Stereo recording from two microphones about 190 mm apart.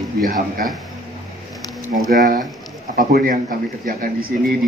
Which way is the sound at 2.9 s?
50° right (ahead or behind).